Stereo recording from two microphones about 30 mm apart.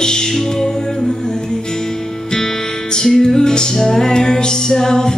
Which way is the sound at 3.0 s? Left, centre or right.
Centre.